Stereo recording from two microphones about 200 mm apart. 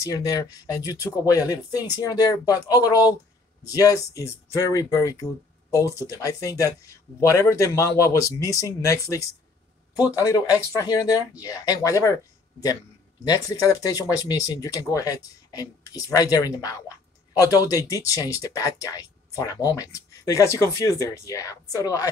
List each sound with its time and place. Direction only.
0.0 s speech: 15° left (ahead or behind)